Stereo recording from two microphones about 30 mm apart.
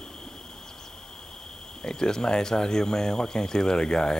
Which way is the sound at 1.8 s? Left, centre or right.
Left.